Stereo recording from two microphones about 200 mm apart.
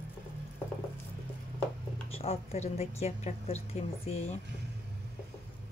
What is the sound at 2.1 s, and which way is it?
A woman's voice, 30° left (ahead or behind).